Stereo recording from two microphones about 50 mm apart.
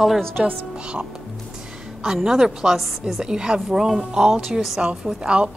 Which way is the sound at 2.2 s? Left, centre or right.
Centre.